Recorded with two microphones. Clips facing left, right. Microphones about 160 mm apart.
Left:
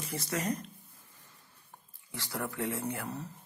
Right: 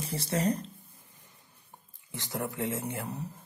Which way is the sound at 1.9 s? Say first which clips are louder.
Right 2 dB; 20° right (ahead or behind).